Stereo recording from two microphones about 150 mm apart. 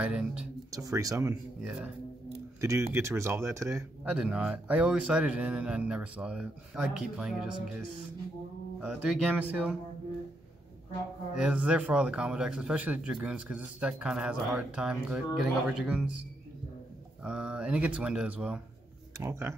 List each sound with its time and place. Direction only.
0.0 s speech: 5° right (ahead or behind)
0.7 s speech: 20° right (ahead or behind)
1.6 s speech: 5° right (ahead or behind)
2.6 s speech: 20° right (ahead or behind)
4.0 s speech: 5° right (ahead or behind)
8.8 s speech: 5° right (ahead or behind)
11.3 s speech: 10° right (ahead or behind)
17.2 s speech: 5° right (ahead or behind)
19.1 s speech: 20° right (ahead or behind)